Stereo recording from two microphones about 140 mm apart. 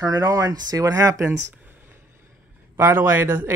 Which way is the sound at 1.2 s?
15° right (ahead or behind).